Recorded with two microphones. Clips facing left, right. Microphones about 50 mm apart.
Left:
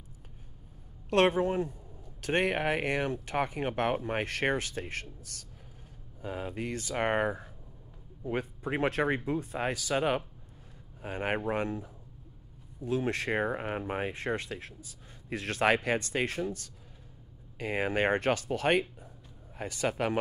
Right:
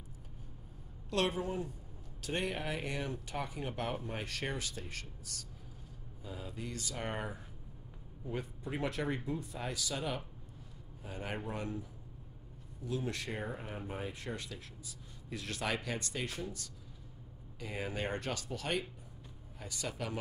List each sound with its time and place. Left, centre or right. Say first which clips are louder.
1.1 s speech: left 9 dB; left